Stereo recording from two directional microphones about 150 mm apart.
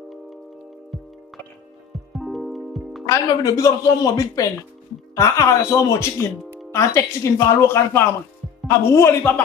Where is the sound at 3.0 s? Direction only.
20° left (ahead or behind).